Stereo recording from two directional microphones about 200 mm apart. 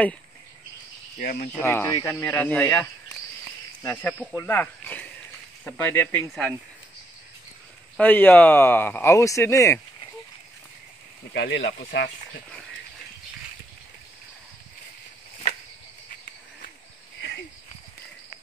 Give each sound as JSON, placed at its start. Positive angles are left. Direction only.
{"t": 1.1, "sound": "speech", "side_deg": 45}
{"t": 1.5, "sound": "speech", "side_deg": 10}
{"t": 8.0, "sound": "speech", "side_deg": 10}
{"t": 11.3, "sound": "speech", "side_deg": 55}
{"t": 17.2, "sound": "a sound", "side_deg": 55}